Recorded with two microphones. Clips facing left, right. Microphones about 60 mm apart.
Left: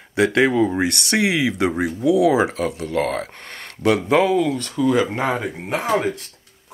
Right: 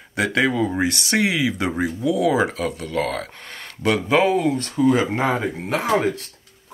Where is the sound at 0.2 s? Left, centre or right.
Left.